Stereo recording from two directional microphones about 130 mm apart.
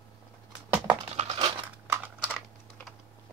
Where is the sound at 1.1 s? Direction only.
50° right (ahead or behind).